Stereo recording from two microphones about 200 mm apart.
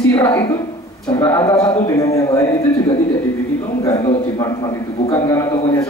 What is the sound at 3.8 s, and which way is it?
A man's voice, 15° left (ahead or behind).